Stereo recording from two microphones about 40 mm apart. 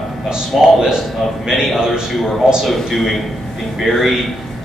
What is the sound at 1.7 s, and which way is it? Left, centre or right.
Speech, centre.